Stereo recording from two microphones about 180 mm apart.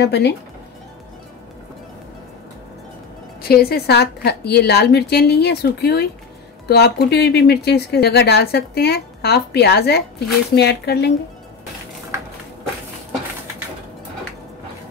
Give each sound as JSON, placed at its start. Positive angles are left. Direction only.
{"t": 0.0, "sound": "speech", "side_deg": 70}
{"t": 3.4, "sound": "speech", "side_deg": 60}